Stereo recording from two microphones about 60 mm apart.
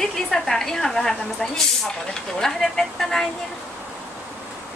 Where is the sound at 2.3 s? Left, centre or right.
Centre.